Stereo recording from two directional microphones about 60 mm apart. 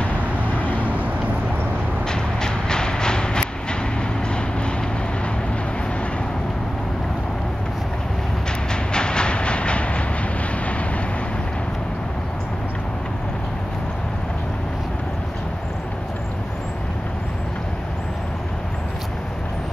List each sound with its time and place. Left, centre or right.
0.8 s vehicle: right
2.0 s train: centre
8.9 s train: centre